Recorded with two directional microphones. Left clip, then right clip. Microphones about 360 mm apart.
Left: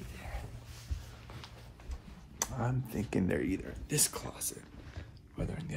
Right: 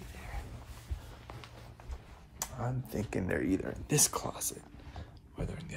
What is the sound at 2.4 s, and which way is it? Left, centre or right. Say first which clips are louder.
Speech: left 3 dB; centre.